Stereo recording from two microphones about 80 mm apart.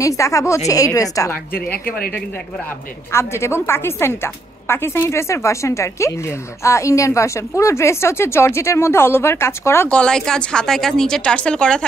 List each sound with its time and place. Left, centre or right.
0.0 s a woman's voice: left
1.7 s a woman's voice: centre
3.1 s a woman's voice: left
9.8 s a woman's voice: centre